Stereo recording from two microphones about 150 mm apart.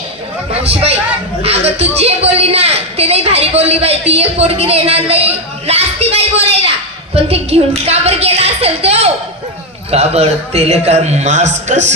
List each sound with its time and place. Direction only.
0.6 s a woman's voice: 40° right (ahead or behind)